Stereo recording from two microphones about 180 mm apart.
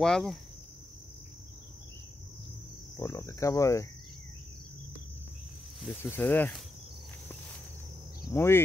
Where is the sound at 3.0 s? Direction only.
15° left (ahead or behind).